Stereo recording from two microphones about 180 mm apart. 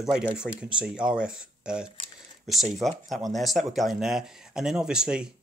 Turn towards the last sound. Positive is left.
turn(degrees=-5)  # may be behind; listen again after turning